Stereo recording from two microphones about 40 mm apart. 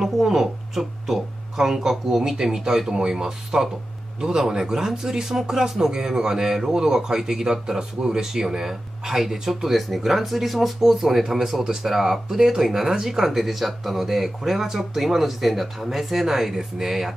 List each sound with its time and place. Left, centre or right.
0.0 s speech: centre